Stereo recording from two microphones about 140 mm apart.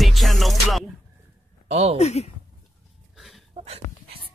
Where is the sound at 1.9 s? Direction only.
50° left (ahead or behind).